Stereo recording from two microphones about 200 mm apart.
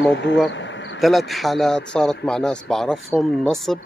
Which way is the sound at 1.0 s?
Centre (ahead or behind).